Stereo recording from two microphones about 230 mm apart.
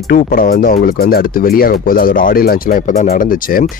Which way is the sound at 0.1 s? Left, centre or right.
Left.